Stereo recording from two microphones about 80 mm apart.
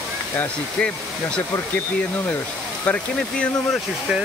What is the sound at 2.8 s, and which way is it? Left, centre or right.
Speech, centre.